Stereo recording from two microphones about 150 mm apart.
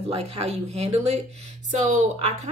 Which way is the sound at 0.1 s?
40° right (ahead or behind).